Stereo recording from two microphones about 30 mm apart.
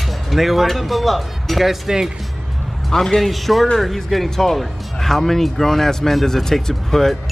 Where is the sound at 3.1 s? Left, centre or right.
Centre.